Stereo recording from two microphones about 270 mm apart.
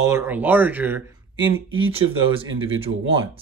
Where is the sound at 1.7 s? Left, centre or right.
Centre.